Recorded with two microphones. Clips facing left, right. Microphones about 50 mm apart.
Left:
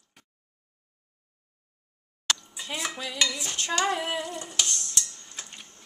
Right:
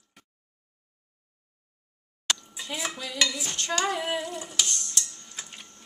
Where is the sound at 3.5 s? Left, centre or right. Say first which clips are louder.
Even; left.